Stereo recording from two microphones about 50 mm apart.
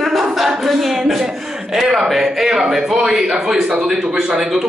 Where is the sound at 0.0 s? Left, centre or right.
Centre.